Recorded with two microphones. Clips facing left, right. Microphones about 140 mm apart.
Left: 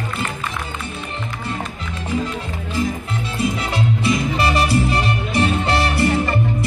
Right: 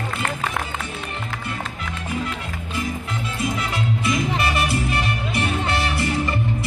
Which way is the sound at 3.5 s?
30° left (ahead or behind).